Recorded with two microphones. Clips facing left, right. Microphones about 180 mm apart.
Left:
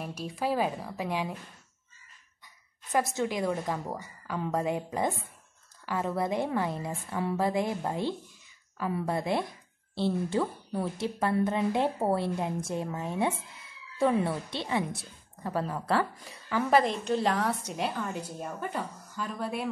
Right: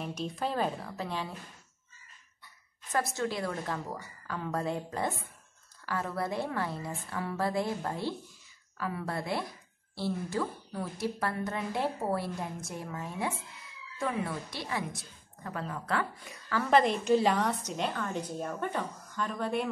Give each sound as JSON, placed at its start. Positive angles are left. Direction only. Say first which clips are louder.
{"t": 0.0, "sound": "a woman's voice", "louder": "left 1 dB", "side_deg": 5}
{"t": 3.2, "sound": "a woman's voice", "louder": "left 4 dB", "side_deg": 15}
{"t": 16.4, "sound": "speech", "louder": "left 3 dB", "side_deg": 15}
{"t": 16.7, "sound": "a woman's voice", "louder": "right 2 dB", "side_deg": 0}